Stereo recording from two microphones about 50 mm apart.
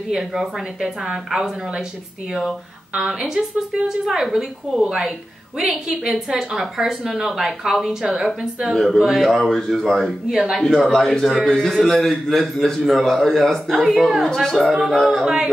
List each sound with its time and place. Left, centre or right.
0.1 s a woman's voice: centre
2.9 s a woman's voice: centre
14.6 s speech: centre
15.2 s a woman's voice: centre